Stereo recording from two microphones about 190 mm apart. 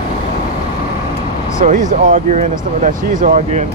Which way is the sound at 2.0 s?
45° right (ahead or behind).